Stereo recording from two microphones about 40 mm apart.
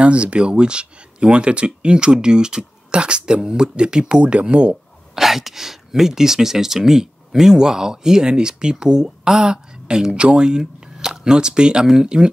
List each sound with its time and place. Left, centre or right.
0.0 s speech: right
5.1 s speech: centre